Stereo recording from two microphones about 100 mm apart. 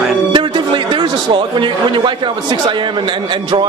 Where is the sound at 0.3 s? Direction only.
50° right (ahead or behind).